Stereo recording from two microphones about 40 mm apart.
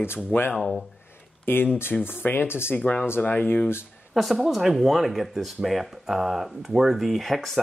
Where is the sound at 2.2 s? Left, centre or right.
Left.